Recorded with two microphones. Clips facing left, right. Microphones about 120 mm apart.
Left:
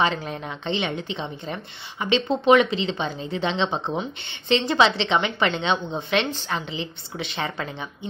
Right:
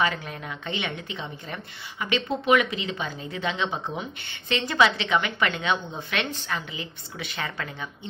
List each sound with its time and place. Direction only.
0.2 s a woman's voice: 25° left (ahead or behind)